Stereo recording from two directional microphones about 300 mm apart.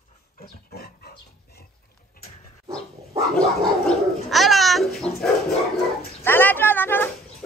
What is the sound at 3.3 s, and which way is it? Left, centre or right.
Gargling, centre.